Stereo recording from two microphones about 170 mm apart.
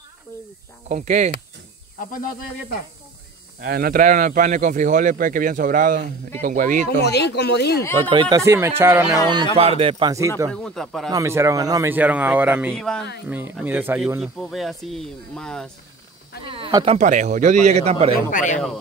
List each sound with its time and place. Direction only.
0.8 s speech: 45° right (ahead or behind)
2.0 s speech: 55° left (ahead or behind)
3.6 s speech: 60° right (ahead or behind)
7.0 s speech: 80° left
8.1 s speech: 30° right (ahead or behind)
8.4 s speech: 15° right (ahead or behind)
9.3 s a man's voice: 30° right (ahead or behind)
10.5 s speech: 5° left (ahead or behind)
11.1 s speech: 20° right (ahead or behind)
12.7 s speech: 5° left (ahead or behind)
13.7 s speech: 10° right (ahead or behind)
16.4 s snake: 30° right (ahead or behind)
17.0 s speech: 45° right (ahead or behind)
18.1 s speech: 50° left (ahead or behind)